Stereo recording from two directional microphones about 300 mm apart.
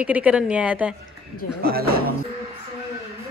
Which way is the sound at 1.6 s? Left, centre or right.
Right.